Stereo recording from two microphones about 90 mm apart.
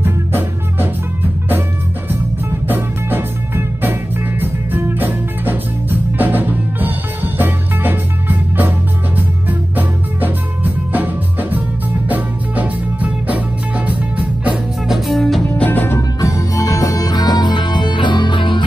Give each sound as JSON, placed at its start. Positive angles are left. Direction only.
{"t": 0.0, "sound": "music", "side_deg": -25}
{"t": 2.7, "sound": "music", "side_deg": -25}
{"t": 14.9, "sound": "music", "side_deg": 0}
{"t": 15.5, "sound": "music", "side_deg": 20}
{"t": 16.0, "sound": "music", "side_deg": 35}